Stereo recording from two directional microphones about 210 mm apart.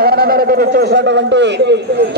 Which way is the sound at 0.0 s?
45° right (ahead or behind).